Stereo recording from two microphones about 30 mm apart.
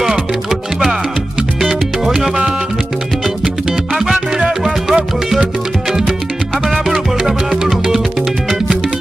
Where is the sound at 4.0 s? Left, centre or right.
Centre.